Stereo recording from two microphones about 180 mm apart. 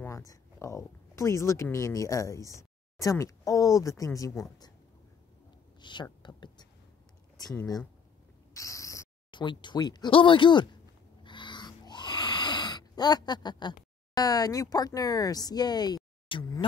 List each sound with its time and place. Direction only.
0.0 s speech: 20° left (ahead or behind)
5.8 s speech: 25° left (ahead or behind)
6.2 s a sound: 25° left (ahead or behind)
7.3 s speech: 20° left (ahead or behind)
11.2 s wheeze: 25° left (ahead or behind)
14.1 s speech: 20° left (ahead or behind)